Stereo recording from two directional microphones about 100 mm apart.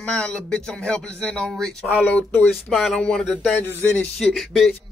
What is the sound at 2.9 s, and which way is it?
A man's voice, 15° left (ahead or behind).